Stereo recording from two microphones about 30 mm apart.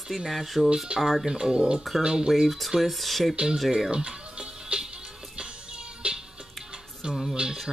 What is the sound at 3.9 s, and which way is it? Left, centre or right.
Music, right.